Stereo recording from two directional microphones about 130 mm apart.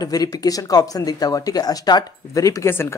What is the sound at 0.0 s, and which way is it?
Speech, 30° left (ahead or behind).